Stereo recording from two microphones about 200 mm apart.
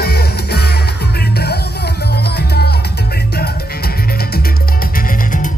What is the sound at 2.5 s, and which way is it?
Music, 55° left (ahead or behind).